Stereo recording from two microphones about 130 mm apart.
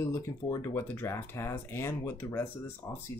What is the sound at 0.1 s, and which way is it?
Speech, 20° left (ahead or behind).